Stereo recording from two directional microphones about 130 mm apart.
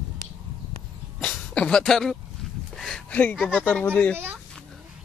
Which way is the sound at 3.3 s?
10° left (ahead or behind).